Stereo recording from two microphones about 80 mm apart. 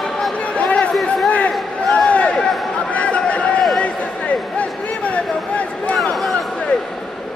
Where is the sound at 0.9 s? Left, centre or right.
Centre.